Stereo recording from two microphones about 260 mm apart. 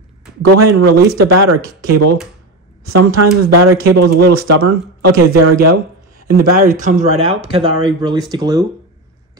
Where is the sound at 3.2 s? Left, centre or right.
Right.